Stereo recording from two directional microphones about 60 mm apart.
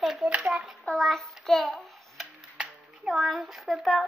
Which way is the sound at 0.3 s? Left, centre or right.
Centre.